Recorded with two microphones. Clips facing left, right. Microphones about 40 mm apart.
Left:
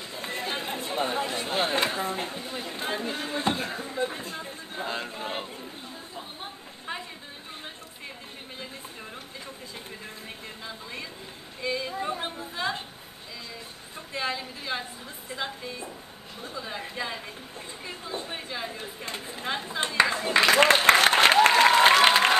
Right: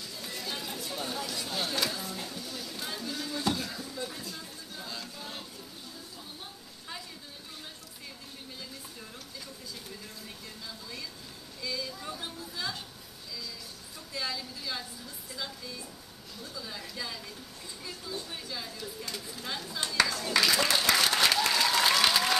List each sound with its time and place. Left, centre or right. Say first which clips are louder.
0.0 s speech: left 6 dB; left
6.1 s a sound: left 6 dB; left
10.6 s speech: left 4 dB; left
14.1 s speech: left 5 dB; left
20.4 s applause: left 10 dB; left